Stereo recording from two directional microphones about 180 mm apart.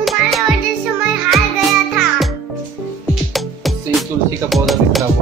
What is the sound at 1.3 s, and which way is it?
Music, centre (ahead or behind).